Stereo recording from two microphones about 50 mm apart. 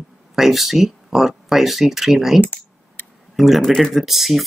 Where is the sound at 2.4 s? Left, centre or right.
Left.